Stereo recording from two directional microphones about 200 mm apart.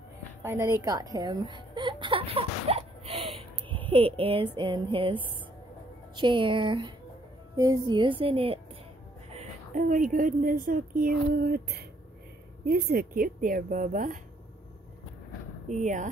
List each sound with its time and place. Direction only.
0.4 s a woman's voice: 15° right (ahead or behind)
6.1 s a woman's voice: 25° right (ahead or behind); by 14.2 s 40° right (ahead or behind)
15.7 s speech: 40° right (ahead or behind)